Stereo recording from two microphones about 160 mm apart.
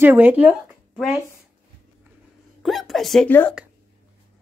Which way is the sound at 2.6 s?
Centre (ahead or behind).